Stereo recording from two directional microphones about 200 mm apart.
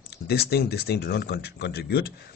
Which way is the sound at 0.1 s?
55° left (ahead or behind).